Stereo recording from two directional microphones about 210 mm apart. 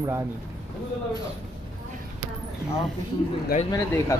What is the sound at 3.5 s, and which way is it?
Speech, 40° left (ahead or behind).